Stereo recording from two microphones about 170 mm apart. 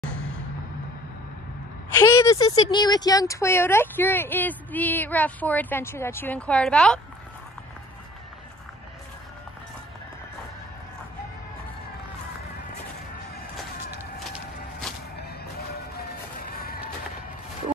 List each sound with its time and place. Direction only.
2.0 s speech: 15° left (ahead or behind)
16.0 s music: 60° left (ahead or behind)